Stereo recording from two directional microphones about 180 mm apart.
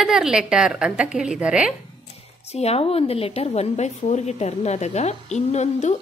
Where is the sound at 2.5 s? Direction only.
35° left (ahead or behind).